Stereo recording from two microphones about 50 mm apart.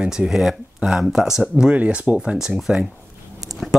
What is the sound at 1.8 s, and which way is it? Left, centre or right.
Speech, right.